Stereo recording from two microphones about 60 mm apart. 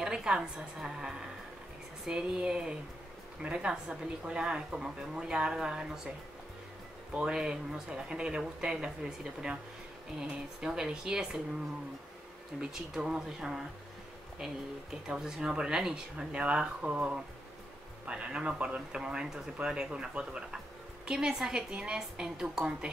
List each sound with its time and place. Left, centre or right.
0.0 s speech: centre
7.2 s speech: centre
12.5 s speech: centre
15.0 s speech: centre